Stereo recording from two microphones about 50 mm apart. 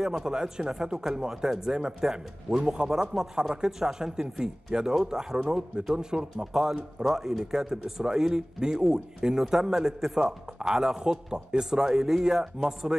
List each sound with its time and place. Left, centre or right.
0.0 s a man's voice: centre
1.6 s a man's voice: centre